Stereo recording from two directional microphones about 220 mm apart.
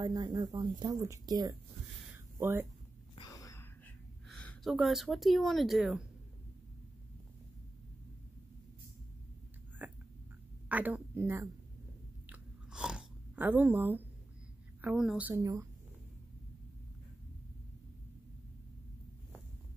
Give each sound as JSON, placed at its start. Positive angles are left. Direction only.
{"t": 0.0, "sound": "speech", "side_deg": -20}
{"t": 2.1, "sound": "a sound", "side_deg": -10}
{"t": 3.2, "sound": "whispering", "side_deg": 15}
{"t": 4.3, "sound": "a sound", "side_deg": 5}
{"t": 4.7, "sound": "speech", "side_deg": 0}
{"t": 9.8, "sound": "a sound", "side_deg": -10}
{"t": 10.7, "sound": "a woman's voice", "side_deg": -5}
{"t": 12.3, "sound": "biting", "side_deg": -5}
{"t": 14.8, "sound": "speech", "side_deg": -5}